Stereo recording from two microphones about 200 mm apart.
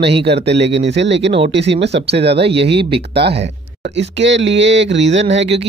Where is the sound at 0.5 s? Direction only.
60° right (ahead or behind).